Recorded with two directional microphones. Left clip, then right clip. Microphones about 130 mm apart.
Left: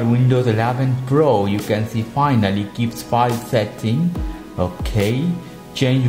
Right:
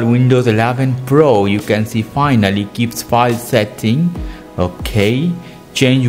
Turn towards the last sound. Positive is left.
turn(degrees=-60)  # may be behind; listen again after turning